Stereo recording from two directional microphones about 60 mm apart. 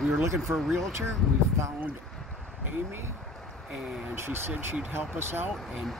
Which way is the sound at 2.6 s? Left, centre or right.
Right.